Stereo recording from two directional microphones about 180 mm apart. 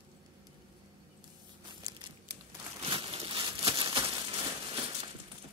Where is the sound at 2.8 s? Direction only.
30° right (ahead or behind).